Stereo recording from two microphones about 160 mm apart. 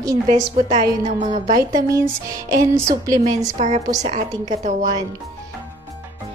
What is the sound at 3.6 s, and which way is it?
A woman's voice, 45° right (ahead or behind).